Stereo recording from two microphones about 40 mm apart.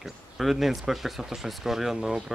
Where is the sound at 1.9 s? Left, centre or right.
Centre.